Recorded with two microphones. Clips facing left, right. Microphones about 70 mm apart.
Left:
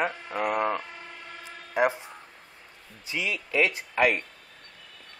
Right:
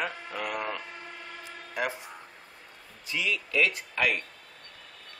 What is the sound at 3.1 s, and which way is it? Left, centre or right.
Speech, left.